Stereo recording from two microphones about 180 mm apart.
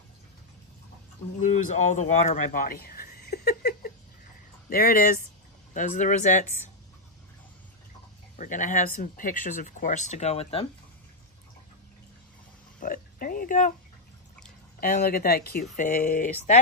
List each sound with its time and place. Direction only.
1.4 s a sound: 40° left (ahead or behind); by 3.9 s 60° left (ahead or behind)
4.6 s speech: 55° left (ahead or behind)
8.4 s speech: 45° left (ahead or behind)
12.8 s oink: 50° left (ahead or behind)
14.8 s speech: 50° left (ahead or behind)
15.6 s speech: 45° left (ahead or behind)